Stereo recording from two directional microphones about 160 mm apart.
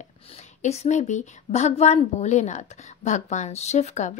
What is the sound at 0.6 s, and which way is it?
A woman's voice, 45° left (ahead or behind).